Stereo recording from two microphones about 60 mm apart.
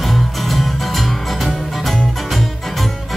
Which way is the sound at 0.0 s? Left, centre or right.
Centre.